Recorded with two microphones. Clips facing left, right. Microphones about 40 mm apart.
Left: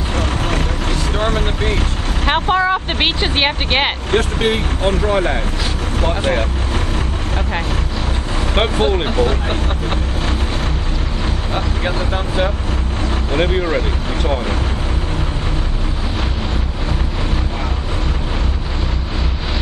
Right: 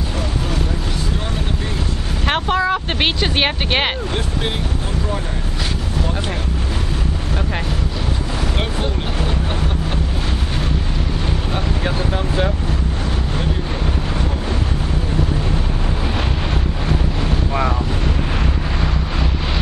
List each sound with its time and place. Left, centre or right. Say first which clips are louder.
2.4 s speech: left 3 dB; centre
4.1 s speech: left 7 dB; left
8.5 s speech: left 7 dB; left
11.5 s speech: left 3 dB; left
13.4 s speech: left 7 dB; left